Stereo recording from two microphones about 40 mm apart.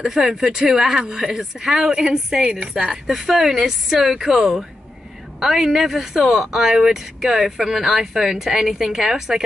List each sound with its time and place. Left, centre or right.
0.1 s speech: centre
0.4 s a woman's voice: centre